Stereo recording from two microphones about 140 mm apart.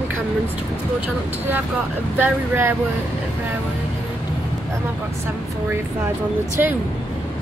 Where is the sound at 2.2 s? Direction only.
15° right (ahead or behind).